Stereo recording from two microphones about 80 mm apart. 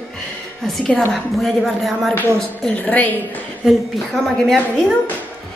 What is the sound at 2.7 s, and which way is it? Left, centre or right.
Speech, centre.